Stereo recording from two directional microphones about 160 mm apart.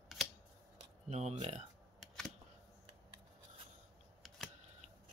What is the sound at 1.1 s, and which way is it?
Speech, 45° right (ahead or behind).